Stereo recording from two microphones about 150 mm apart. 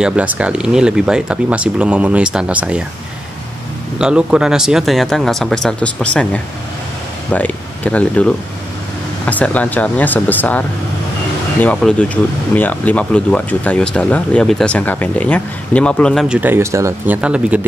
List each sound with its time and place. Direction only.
0.0 s speech: 10° right (ahead or behind)
4.0 s speech: 5° right (ahead or behind); by 10.6 s 10° left (ahead or behind)
11.6 s speech: 10° left (ahead or behind)
16.3 s speech: 10° right (ahead or behind)